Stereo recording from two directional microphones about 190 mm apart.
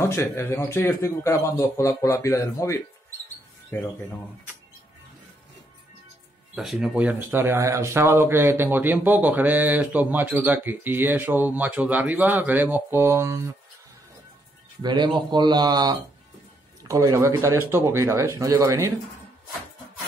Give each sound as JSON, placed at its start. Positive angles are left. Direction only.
{"t": 0.0, "sound": "a man's voice", "side_deg": 15}
{"t": 6.5, "sound": "speech", "side_deg": -5}
{"t": 14.8, "sound": "speech", "side_deg": -25}